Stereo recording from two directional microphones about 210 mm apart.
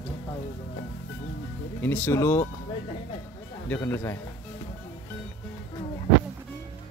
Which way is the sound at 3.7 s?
10° left (ahead or behind).